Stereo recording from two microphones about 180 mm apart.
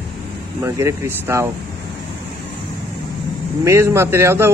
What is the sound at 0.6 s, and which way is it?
Speech, 15° right (ahead or behind).